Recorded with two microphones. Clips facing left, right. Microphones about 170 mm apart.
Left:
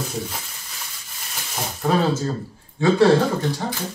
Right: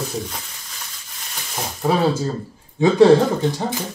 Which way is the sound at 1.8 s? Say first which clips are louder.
Right 1 dB; 10° right (ahead or behind).